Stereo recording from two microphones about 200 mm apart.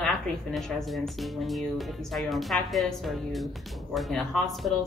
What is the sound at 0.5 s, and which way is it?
Speech, centre (ahead or behind).